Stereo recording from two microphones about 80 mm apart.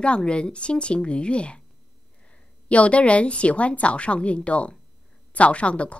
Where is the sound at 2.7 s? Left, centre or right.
Centre.